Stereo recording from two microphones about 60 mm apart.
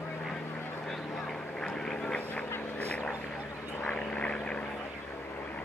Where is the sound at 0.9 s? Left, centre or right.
Centre.